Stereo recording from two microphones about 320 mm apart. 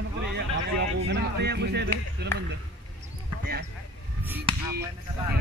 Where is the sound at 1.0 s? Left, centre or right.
Right.